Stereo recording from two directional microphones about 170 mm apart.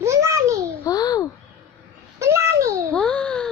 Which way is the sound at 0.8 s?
20° left (ahead or behind).